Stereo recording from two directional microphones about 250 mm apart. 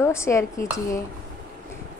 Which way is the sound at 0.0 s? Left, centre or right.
Centre.